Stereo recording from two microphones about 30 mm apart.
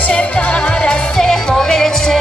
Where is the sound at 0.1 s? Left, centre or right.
Left.